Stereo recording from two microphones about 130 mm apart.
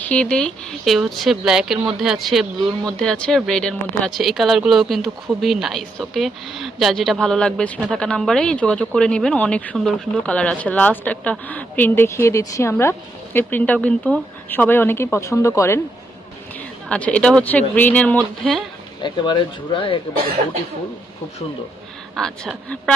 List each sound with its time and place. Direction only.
0.0 s speech: 10° left (ahead or behind)
16.9 s speech: 10° left (ahead or behind)
19.0 s speech: 35° left (ahead or behind)
22.1 s speech: 5° left (ahead or behind)